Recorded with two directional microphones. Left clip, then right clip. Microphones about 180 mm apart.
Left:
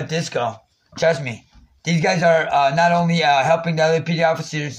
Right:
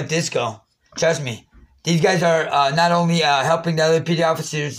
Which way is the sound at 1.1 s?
30° left (ahead or behind).